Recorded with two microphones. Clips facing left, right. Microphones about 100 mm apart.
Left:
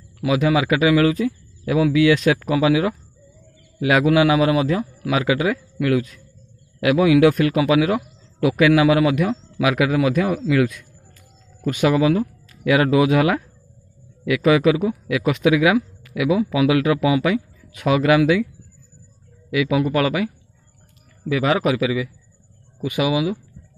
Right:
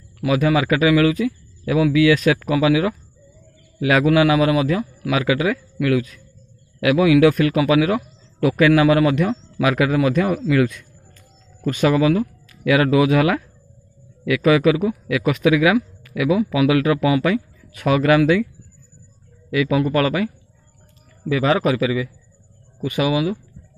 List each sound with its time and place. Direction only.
0.2 s a man's voice: 20° left (ahead or behind)
19.5 s a man's voice: 10° left (ahead or behind)
21.3 s a man's voice: 10° left (ahead or behind)